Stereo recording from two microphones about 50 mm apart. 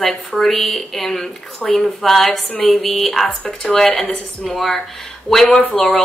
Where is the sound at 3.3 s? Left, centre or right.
Centre.